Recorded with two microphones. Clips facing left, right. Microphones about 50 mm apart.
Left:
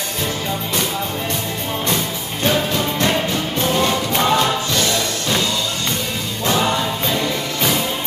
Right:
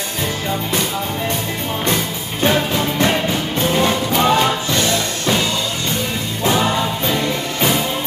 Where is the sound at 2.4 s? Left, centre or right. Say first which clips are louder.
Right 2 dB; centre.